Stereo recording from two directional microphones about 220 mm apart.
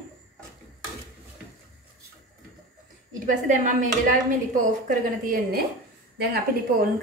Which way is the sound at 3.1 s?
35° right (ahead or behind).